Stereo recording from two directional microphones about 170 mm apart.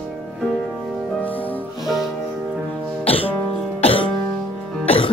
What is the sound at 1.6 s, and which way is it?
Music, centre (ahead or behind).